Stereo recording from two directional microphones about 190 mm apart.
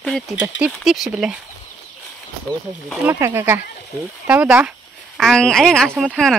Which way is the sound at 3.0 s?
10° right (ahead or behind).